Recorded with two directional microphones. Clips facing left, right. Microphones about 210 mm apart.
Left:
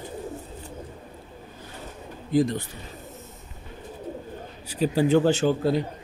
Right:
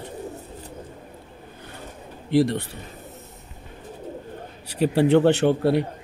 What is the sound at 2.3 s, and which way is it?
Speech, 70° right (ahead or behind).